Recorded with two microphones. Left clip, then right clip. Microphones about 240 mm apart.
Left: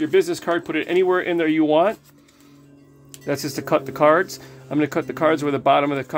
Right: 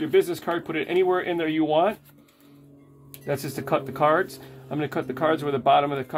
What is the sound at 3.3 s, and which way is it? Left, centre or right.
Speech, left.